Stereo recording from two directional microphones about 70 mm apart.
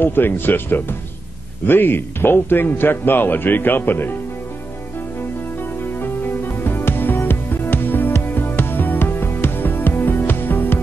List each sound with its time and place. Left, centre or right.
0.0 s a man's voice: left
5.9 s music: left